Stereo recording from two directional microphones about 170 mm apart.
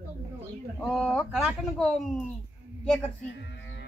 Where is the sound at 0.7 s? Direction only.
Centre (ahead or behind).